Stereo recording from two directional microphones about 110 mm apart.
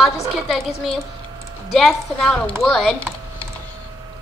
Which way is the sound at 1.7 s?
5° left (ahead or behind).